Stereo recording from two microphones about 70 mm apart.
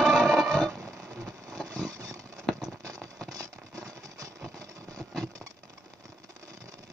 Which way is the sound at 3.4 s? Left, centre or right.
Right.